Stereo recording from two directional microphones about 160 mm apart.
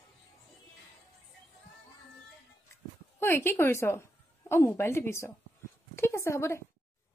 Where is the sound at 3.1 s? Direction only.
15° left (ahead or behind).